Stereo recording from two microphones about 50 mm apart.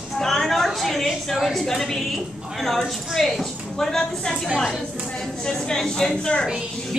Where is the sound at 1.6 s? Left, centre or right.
Centre.